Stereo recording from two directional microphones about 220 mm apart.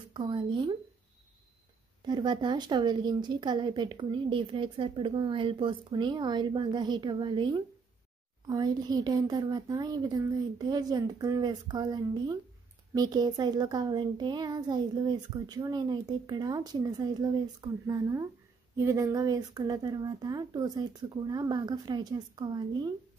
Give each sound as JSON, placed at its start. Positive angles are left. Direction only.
{"t": 0.1, "sound": "a woman's voice", "side_deg": -20}
{"t": 2.0, "sound": "a woman's voice", "side_deg": -20}